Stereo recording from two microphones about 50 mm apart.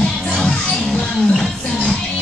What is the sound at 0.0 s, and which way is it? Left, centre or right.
Music, centre.